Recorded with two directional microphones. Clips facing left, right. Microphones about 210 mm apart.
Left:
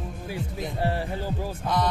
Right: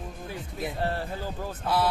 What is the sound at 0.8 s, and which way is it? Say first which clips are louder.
Speech: left 4 dB; 15° left (ahead or behind).